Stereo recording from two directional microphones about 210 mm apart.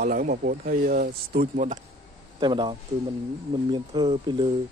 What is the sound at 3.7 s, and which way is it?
Speech, 20° right (ahead or behind).